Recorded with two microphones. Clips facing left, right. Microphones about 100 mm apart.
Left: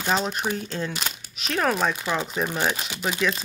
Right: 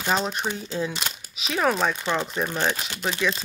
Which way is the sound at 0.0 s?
Centre (ahead or behind).